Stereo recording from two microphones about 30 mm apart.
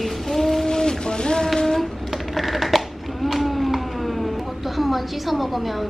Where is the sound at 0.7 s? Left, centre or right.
Left.